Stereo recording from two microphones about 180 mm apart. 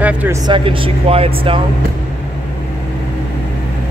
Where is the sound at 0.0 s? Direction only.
10° right (ahead or behind).